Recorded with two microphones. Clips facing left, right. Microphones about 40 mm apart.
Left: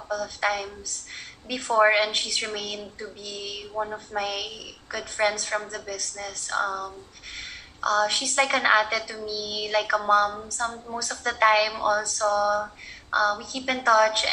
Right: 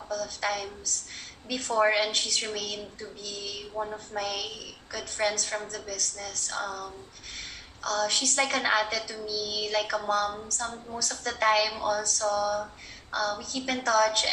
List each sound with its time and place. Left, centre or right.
0.1 s a woman's voice: centre